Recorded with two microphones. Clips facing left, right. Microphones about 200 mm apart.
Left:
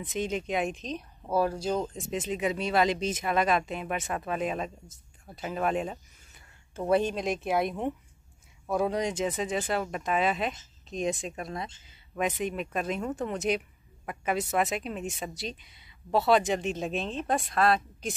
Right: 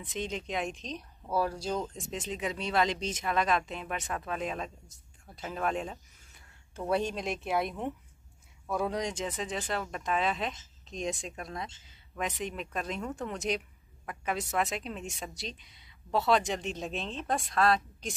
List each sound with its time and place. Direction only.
0.0 s speech: 5° left (ahead or behind)
8.6 s speech: 20° left (ahead or behind)
8.9 s speech: 5° left (ahead or behind)